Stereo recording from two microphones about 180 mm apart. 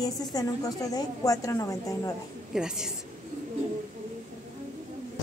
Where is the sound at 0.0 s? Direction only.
20° left (ahead or behind).